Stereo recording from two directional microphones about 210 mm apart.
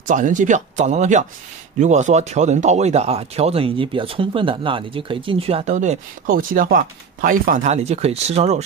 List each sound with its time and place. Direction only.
0.0 s speech: 35° right (ahead or behind)